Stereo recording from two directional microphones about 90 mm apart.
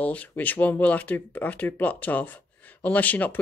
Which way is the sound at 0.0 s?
15° left (ahead or behind).